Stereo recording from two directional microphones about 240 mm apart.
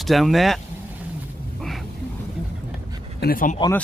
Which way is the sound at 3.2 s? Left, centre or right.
Left.